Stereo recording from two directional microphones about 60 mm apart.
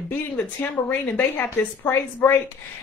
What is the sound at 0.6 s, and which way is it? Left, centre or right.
A woman's voice, left.